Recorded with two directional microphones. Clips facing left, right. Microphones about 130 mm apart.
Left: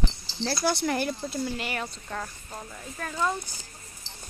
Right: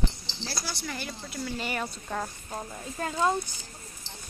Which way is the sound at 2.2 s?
15° right (ahead or behind).